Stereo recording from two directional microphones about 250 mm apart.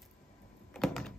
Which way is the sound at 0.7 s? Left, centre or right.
Centre.